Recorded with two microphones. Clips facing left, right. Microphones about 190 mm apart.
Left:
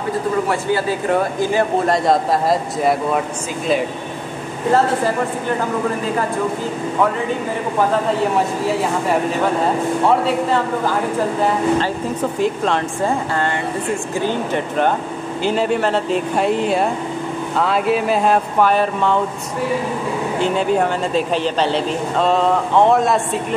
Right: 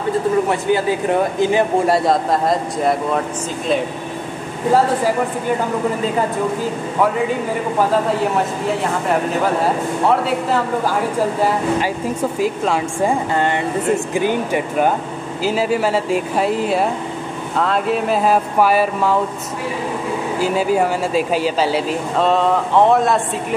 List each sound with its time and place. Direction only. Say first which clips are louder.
0.5 s speech: right 2 dB; 15° right (ahead or behind)
1.9 s speech: even; centre (ahead or behind)
11.8 s speech: even; 10° right (ahead or behind)
20.3 s speech: right 1 dB; 5° right (ahead or behind)